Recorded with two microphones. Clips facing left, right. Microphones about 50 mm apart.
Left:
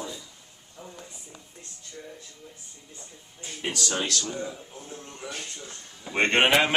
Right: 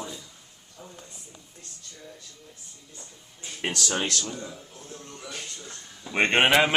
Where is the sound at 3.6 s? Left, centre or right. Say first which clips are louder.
Right 2 dB; right.